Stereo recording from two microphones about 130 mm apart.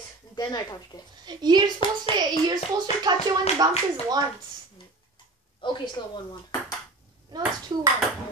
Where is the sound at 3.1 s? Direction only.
30° right (ahead or behind).